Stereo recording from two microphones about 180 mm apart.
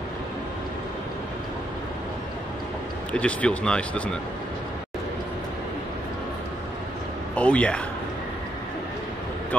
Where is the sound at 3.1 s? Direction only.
5° left (ahead or behind).